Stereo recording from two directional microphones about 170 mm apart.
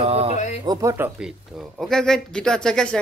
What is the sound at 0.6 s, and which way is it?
Speech, 20° right (ahead or behind).